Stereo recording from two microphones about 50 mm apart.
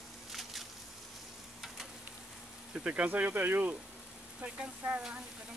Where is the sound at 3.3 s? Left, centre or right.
Right.